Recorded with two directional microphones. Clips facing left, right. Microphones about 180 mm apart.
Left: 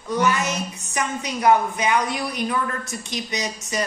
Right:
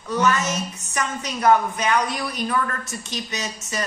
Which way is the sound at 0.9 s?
15° left (ahead or behind).